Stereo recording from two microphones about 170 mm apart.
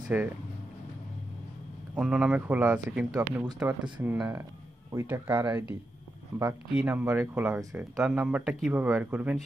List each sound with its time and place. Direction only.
0.1 s speech: 5° right (ahead or behind)
2.0 s speech: 5° right (ahead or behind)
4.2 s speech: 20° right (ahead or behind)